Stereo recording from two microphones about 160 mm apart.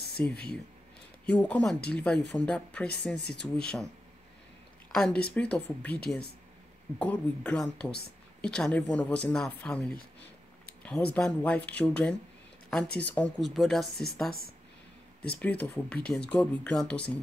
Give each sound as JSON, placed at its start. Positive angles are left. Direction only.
{"t": 0.2, "sound": "speech", "side_deg": 10}
{"t": 4.9, "sound": "speech", "side_deg": 5}
{"t": 7.0, "sound": "speech", "side_deg": 10}
{"t": 10.8, "sound": "a sound", "side_deg": 5}
{"t": 11.1, "sound": "speech", "side_deg": 5}
{"t": 15.2, "sound": "speech", "side_deg": 10}